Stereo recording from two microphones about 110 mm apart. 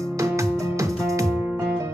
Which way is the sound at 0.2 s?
30° right (ahead or behind).